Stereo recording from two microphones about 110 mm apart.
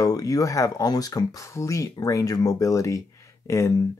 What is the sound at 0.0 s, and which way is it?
Speech, 35° left (ahead or behind).